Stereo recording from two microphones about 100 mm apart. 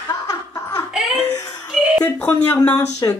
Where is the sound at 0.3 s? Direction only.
30° left (ahead or behind).